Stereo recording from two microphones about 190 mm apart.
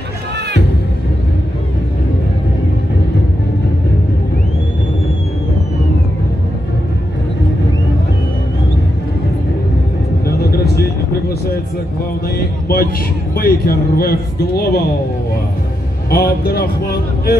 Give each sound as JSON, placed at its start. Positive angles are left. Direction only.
{"t": 10.2, "sound": "a sound", "side_deg": 55}
{"t": 12.4, "sound": "music", "side_deg": 50}
{"t": 13.4, "sound": "a man's voice", "side_deg": 50}
{"t": 16.1, "sound": "a man's voice", "side_deg": 55}